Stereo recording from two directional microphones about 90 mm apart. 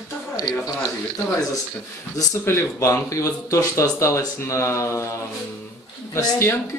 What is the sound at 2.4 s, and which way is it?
Speech, 30° left (ahead or behind).